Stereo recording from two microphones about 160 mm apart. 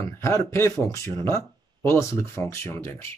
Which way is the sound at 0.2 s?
20° left (ahead or behind).